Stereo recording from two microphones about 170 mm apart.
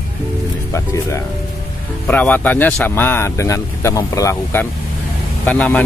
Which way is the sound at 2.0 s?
10° left (ahead or behind).